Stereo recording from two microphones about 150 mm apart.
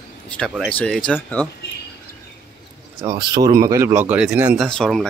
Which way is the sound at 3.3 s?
25° right (ahead or behind).